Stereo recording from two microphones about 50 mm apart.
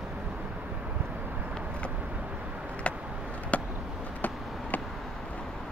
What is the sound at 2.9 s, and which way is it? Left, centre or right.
Chop, left.